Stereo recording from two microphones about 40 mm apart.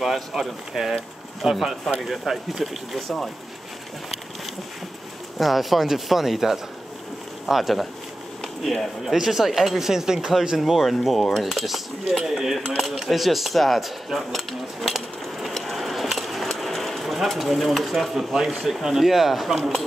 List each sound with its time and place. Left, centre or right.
0.0 s speech: centre
5.4 s speech: centre
8.4 s a sound: centre
9.0 s speech: centre
10.6 s speech: centre
15.5 s a sound: centre
16.4 s speech: centre